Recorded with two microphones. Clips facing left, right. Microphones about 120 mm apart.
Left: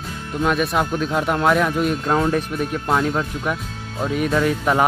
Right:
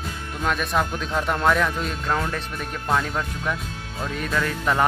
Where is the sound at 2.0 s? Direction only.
25° left (ahead or behind).